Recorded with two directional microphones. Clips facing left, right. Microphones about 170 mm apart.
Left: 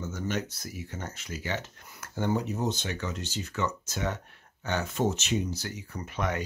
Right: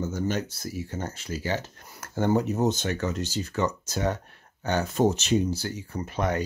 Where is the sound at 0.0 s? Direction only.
35° right (ahead or behind).